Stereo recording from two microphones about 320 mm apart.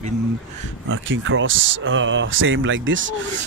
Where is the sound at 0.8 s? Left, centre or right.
Right.